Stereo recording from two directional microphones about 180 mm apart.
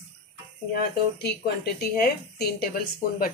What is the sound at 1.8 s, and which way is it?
Speech, 60° left (ahead or behind).